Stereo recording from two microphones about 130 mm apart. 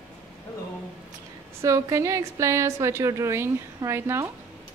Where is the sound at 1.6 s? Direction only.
25° right (ahead or behind).